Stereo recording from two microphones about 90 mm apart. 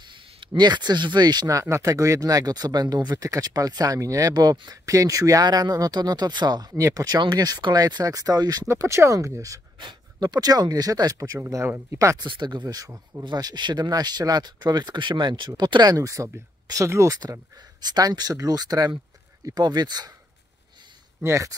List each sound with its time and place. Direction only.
0.5 s speech: 55° right (ahead or behind)
1.6 s speech: 35° right (ahead or behind)
8.6 s speech: 30° right (ahead or behind)
9.8 s speech: 55° right (ahead or behind); by 12.2 s 30° right (ahead or behind)
12.2 s speech: 55° right (ahead or behind); by 13.2 s 40° right (ahead or behind)
13.2 s speech: 50° right (ahead or behind); by 17.2 s 35° right (ahead or behind)
17.2 s speech: 50° right (ahead or behind)
21.2 s speech: 30° right (ahead or behind)